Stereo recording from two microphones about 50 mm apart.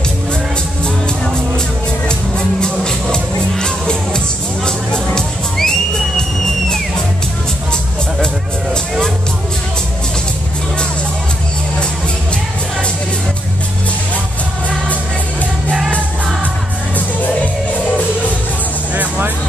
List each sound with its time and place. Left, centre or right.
0.8 s music: centre
18.9 s music: right